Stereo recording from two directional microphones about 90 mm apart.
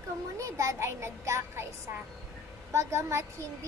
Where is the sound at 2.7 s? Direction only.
35° right (ahead or behind).